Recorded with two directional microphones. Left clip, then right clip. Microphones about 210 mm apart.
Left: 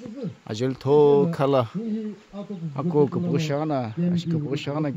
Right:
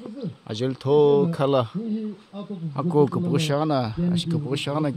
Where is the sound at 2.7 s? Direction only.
10° right (ahead or behind).